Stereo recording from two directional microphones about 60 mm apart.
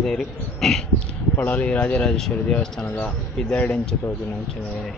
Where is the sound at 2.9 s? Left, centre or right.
Left.